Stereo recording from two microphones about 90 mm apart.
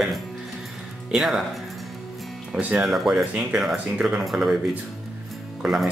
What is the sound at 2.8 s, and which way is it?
Speech, 5° right (ahead or behind).